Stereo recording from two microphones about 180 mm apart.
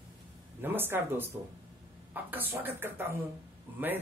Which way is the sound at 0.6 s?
10° right (ahead or behind).